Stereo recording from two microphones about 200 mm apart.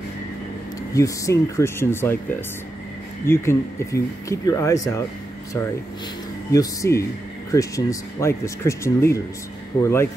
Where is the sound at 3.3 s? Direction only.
15° left (ahead or behind).